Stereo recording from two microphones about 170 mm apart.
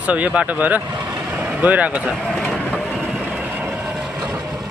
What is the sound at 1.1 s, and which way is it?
Vehicle, 10° right (ahead or behind).